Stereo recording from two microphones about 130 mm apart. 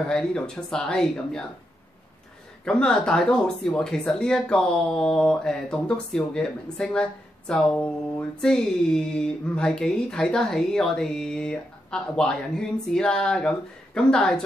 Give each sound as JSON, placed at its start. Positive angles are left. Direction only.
{"t": 0.1, "sound": "speech", "side_deg": 5}
{"t": 2.6, "sound": "speech", "side_deg": 5}